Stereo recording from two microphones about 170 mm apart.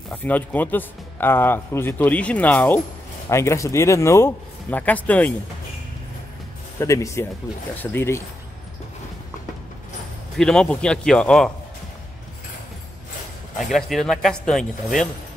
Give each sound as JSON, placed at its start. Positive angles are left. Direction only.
{"t": 0.1, "sound": "speech", "side_deg": 10}
{"t": 6.8, "sound": "speech", "side_deg": 15}
{"t": 10.3, "sound": "speech", "side_deg": 5}
{"t": 13.6, "sound": "speech", "side_deg": 0}